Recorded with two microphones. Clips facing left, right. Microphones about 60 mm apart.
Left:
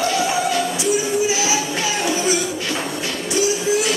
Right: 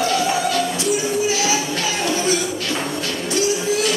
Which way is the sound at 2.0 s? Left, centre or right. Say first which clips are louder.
Even; centre.